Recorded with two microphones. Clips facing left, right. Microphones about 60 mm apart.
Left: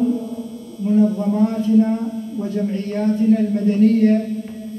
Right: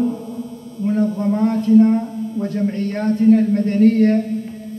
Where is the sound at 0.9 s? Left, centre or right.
Right.